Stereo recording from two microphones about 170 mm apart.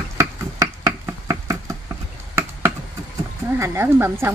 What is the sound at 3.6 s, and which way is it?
Speech, 15° right (ahead or behind).